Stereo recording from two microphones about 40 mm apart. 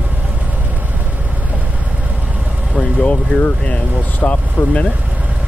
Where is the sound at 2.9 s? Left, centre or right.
Left.